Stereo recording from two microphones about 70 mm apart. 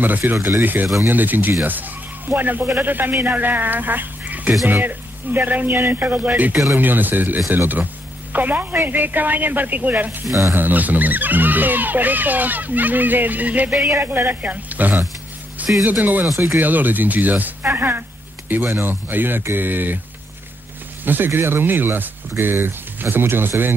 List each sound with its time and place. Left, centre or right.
0.0 s speech: right
21.0 s speech: right